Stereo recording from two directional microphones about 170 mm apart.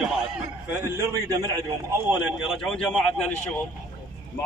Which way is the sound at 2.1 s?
5° right (ahead or behind).